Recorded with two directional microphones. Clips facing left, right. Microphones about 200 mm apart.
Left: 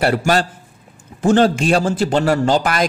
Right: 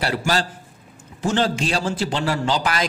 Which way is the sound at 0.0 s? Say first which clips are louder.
Left 6 dB; 50° left (ahead or behind).